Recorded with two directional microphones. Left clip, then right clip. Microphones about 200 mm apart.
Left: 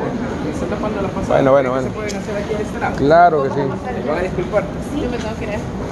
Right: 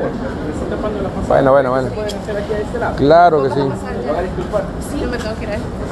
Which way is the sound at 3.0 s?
20° right (ahead or behind).